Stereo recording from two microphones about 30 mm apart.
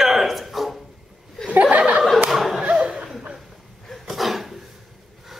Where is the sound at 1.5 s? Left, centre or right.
Right.